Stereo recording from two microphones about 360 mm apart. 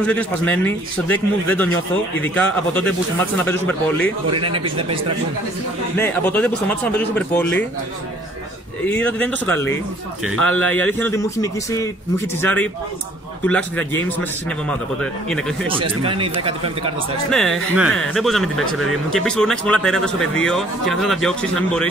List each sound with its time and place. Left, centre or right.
0.0 s speech: centre
2.7 s speech: centre
4.4 s speech: centre
5.9 s speech: centre
8.8 s speech: centre
15.7 s speech: centre
17.3 s speech: centre